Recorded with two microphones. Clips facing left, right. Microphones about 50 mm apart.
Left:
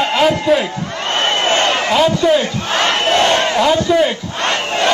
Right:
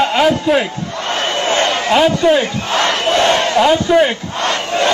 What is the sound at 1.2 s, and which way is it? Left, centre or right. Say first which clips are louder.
Crowd: left 1 dB; left.